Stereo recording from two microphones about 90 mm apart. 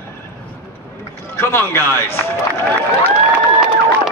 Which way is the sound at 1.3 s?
30° left (ahead or behind).